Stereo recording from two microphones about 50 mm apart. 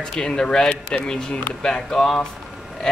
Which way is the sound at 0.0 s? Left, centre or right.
Centre.